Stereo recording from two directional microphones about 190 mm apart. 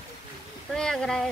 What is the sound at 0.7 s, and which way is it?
Speech, 5° left (ahead or behind).